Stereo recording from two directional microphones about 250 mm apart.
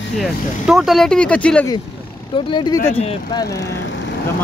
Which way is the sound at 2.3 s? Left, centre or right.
Centre.